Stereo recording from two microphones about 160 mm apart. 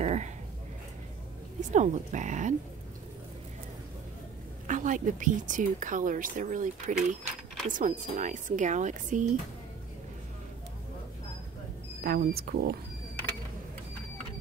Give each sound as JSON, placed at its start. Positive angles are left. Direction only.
{"t": 0.0, "sound": "a sound", "side_deg": -45}
{"t": 1.6, "sound": "speech", "side_deg": -50}
{"t": 4.6, "sound": "speech", "side_deg": -55}
{"t": 12.0, "sound": "speech", "side_deg": -70}